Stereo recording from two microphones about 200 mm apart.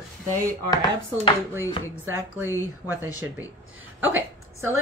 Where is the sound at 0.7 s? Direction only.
20° left (ahead or behind).